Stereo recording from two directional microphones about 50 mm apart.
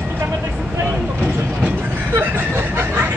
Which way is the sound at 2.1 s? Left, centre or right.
Right.